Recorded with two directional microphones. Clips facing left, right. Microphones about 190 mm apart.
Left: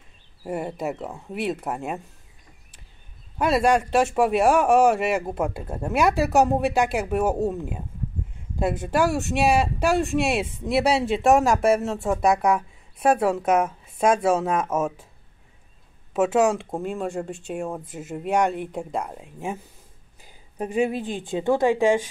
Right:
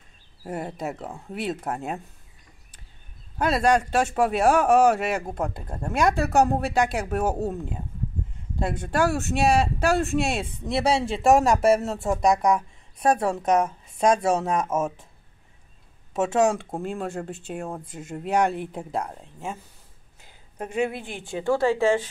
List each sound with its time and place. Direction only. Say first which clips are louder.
0.5 s speech: left 3 dB; centre (ahead or behind)
3.3 s speech: left 1 dB; centre (ahead or behind)
16.1 s speech: left 2 dB; 5° left (ahead or behind)
20.2 s a sound: left 4 dB; 15° left (ahead or behind)
21.1 s speech: left 2 dB; 20° left (ahead or behind)